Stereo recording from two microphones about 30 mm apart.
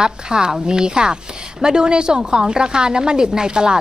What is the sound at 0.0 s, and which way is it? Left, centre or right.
A woman's voice, right.